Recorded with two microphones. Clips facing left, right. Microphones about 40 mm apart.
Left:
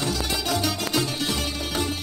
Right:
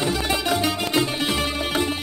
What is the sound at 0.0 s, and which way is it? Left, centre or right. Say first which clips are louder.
Music: right 4 dB; right.